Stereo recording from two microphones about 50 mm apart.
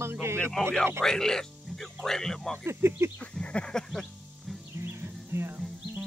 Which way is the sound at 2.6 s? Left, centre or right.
Right.